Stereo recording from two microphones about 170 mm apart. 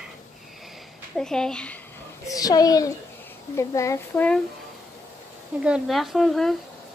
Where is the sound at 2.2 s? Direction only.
20° left (ahead or behind).